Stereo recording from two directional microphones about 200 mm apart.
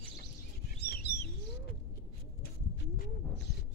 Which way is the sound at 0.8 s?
55° left (ahead or behind).